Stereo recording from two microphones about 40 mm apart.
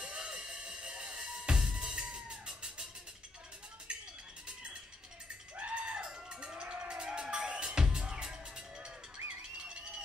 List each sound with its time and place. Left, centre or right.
0.0 s music: right
5.6 s a sound: right
6.9 s music: right